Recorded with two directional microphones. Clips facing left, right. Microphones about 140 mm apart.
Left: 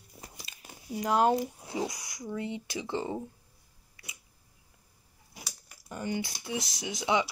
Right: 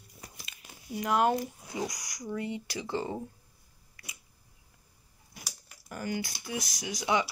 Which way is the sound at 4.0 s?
25° left (ahead or behind).